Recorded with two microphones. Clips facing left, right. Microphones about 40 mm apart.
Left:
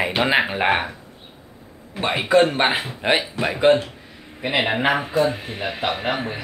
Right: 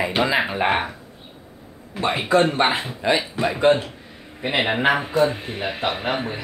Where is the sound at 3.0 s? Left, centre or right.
Left.